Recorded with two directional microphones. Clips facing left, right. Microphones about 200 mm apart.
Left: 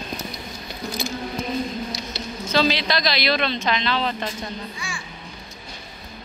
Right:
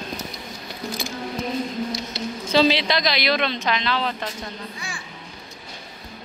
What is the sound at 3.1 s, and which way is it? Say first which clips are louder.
Speech: even; 15° right (ahead or behind).